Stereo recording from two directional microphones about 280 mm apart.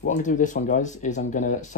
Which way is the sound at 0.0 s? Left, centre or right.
Left.